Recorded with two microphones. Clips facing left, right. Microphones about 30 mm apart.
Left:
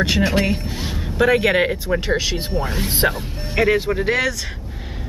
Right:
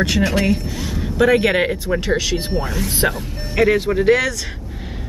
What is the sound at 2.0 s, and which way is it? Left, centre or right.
Speech, centre.